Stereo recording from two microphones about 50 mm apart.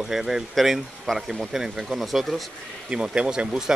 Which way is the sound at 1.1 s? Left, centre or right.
Centre.